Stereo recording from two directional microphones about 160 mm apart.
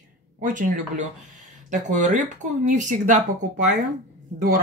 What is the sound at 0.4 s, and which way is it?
Speech, 55° right (ahead or behind).